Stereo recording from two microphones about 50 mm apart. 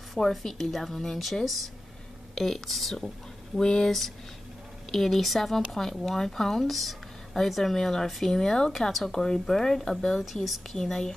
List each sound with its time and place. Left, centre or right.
0.1 s speech: centre
4.9 s speech: centre